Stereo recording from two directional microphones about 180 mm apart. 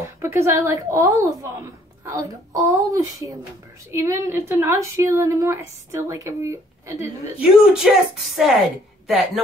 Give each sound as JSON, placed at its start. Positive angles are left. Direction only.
{"t": 0.0, "sound": "a woman's voice", "side_deg": -15}
{"t": 7.3, "sound": "speech", "side_deg": -5}
{"t": 9.0, "sound": "speech", "side_deg": 0}